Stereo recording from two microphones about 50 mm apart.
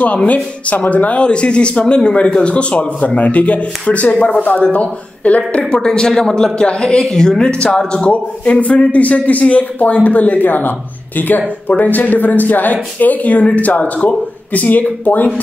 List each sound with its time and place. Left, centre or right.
0.0 s speech: left
5.7 s a woman's voice: centre; by 15.4 s left